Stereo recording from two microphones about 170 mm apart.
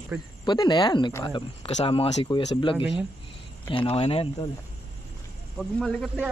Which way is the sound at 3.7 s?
30° left (ahead or behind).